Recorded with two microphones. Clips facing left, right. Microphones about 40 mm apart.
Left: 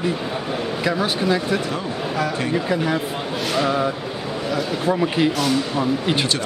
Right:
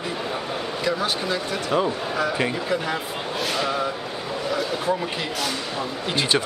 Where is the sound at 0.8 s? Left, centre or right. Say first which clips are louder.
Left 4 dB; centre.